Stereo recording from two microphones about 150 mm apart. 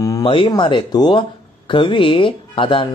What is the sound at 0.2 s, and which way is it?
Speech, 35° left (ahead or behind).